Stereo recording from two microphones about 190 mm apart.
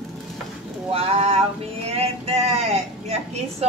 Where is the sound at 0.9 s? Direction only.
30° right (ahead or behind).